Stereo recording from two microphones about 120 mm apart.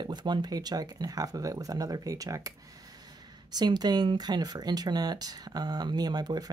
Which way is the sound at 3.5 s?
35° right (ahead or behind).